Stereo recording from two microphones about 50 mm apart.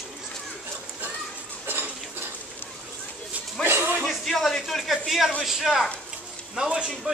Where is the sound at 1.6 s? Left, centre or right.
Right.